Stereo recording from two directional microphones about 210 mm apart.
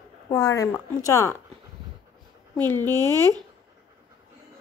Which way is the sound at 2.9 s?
15° right (ahead or behind).